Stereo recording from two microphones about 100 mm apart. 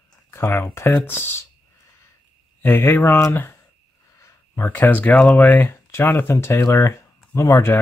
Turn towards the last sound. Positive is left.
turn(degrees=30)  # may be behind; listen again after turning